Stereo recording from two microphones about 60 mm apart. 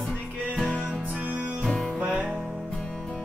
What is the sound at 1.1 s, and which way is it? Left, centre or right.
Music, right.